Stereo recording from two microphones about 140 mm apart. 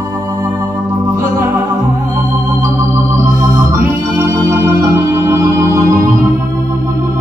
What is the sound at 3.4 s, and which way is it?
Music, 20° right (ahead or behind).